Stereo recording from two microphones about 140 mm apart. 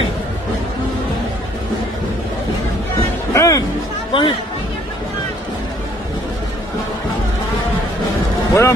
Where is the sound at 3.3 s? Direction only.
20° left (ahead or behind).